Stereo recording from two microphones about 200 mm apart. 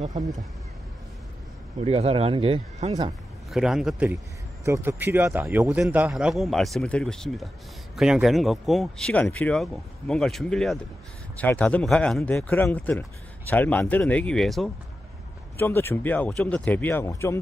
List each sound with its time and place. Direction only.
1.8 s speech: 30° right (ahead or behind)
3.5 s a man's voice: centre (ahead or behind)
15.5 s speech: 10° left (ahead or behind)